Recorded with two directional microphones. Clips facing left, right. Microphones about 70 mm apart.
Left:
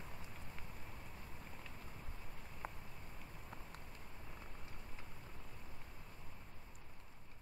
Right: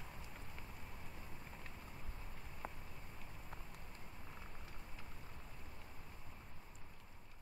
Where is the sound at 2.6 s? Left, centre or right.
Centre.